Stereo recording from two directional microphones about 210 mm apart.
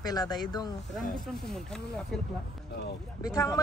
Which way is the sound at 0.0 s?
20° left (ahead or behind).